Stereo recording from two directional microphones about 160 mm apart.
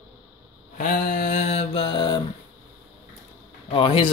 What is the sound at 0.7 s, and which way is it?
Mantra, 55° left (ahead or behind).